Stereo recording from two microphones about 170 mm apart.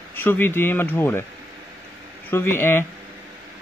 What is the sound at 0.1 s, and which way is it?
A man's voice, 10° left (ahead or behind).